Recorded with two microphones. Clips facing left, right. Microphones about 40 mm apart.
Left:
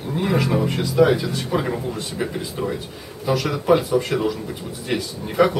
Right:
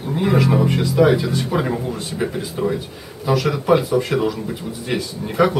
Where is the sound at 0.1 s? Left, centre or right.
Centre.